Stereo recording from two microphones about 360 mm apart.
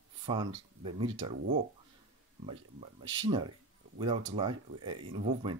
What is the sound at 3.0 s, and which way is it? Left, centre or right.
Speech, centre.